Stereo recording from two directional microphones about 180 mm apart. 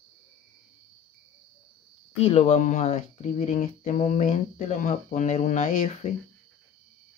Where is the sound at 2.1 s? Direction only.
35° left (ahead or behind).